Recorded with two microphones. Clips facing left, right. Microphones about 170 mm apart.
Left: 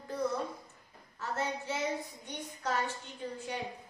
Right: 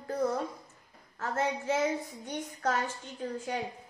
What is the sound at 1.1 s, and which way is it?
A woman's voice, 50° right (ahead or behind).